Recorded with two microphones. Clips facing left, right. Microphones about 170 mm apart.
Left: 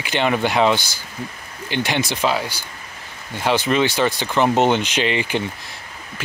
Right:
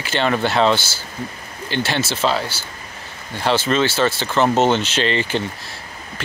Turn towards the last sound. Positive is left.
turn(degrees=15)  # may be behind; listen again after turning